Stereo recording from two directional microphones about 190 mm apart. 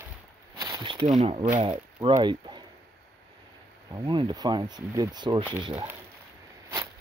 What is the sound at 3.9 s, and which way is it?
Speech, 25° right (ahead or behind).